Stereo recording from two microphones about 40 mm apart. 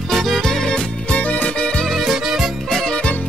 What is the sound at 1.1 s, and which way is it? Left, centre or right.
Music, left.